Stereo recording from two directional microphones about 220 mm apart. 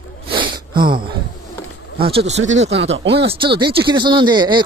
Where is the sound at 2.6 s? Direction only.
55° right (ahead or behind).